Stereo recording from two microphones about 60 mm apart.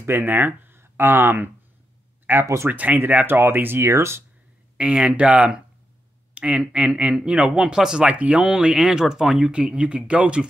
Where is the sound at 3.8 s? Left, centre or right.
Right.